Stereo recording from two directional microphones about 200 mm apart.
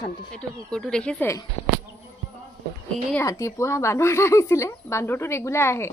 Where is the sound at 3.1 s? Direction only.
15° left (ahead or behind).